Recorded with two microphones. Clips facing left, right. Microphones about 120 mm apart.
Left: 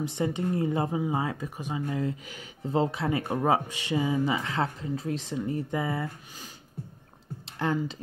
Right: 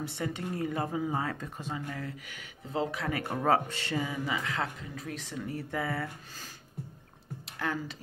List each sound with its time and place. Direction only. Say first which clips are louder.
0.0 s speech: left 6 dB; 20° left (ahead or behind)
7.5 s speech: left 6 dB; 25° left (ahead or behind)